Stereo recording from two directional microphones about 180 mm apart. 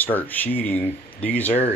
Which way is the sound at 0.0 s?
10° left (ahead or behind).